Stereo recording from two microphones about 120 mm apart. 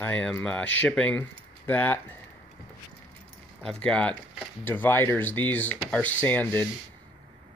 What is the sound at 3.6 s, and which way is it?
Speech, 5° left (ahead or behind).